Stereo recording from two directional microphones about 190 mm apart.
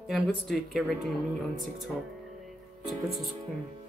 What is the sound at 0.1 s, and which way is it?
Speech, centre (ahead or behind).